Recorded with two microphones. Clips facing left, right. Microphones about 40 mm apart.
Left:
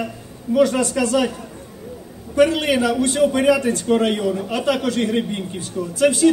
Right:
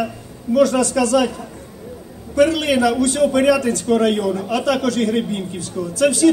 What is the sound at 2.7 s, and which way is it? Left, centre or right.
A man's voice, left.